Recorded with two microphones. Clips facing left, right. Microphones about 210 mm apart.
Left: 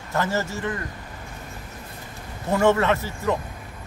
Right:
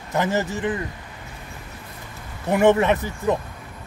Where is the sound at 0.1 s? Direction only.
15° right (ahead or behind).